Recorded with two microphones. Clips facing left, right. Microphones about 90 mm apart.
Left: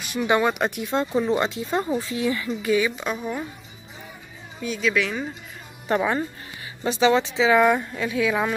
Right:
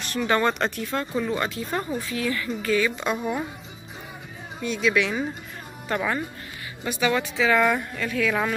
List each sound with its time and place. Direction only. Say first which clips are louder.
0.0 s speech: left 1 dB; 10° left (ahead or behind)
3.0 s speech: right 2 dB; centre (ahead or behind)
4.6 s speech: right 1 dB; centre (ahead or behind)
5.9 s speech: left 4 dB; 20° left (ahead or behind)